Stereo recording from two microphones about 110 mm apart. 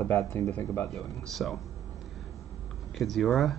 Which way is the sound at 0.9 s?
Centre (ahead or behind).